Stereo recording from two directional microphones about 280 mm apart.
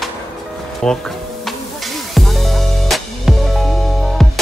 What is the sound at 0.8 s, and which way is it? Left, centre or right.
Music, centre.